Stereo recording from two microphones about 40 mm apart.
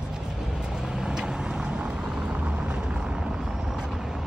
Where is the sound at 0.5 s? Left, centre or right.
Centre.